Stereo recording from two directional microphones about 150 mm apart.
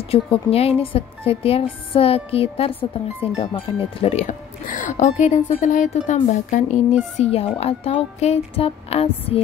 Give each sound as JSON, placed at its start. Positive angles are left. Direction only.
{"t": 0.1, "sound": "a woman's voice", "side_deg": 40}
{"t": 7.2, "sound": "a woman's voice", "side_deg": 40}